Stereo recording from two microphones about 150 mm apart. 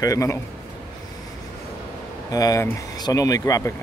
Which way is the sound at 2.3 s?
25° left (ahead or behind).